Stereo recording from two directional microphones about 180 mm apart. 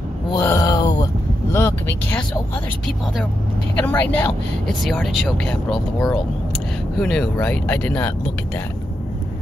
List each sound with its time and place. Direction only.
0.4 s a sound: 20° left (ahead or behind)
1.5 s vehicle: 15° left (ahead or behind)
3.7 s speech: 10° left (ahead or behind)
4.8 s speech: centre (ahead or behind)